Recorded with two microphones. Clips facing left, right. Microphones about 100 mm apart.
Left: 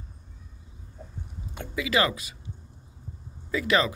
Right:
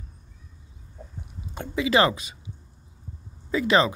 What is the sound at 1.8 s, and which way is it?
Speech, 30° right (ahead or behind).